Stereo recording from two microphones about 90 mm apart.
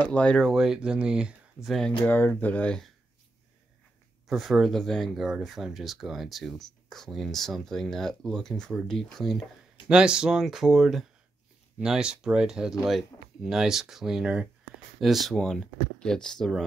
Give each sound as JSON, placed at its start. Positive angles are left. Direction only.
{"t": 0.0, "sound": "speech", "side_deg": 15}
{"t": 0.5, "sound": "speech", "side_deg": -5}
{"t": 1.8, "sound": "speech", "side_deg": 10}
{"t": 4.3, "sound": "speech", "side_deg": 0}
{"t": 9.8, "sound": "speech", "side_deg": -10}